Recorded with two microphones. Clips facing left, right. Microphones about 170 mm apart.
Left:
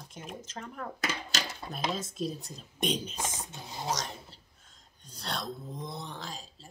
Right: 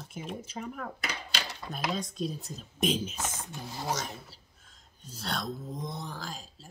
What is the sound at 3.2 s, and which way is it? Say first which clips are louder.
Speech: even; 10° left (ahead or behind).